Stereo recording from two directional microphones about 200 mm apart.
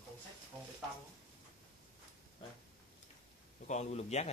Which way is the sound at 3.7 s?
35° left (ahead or behind).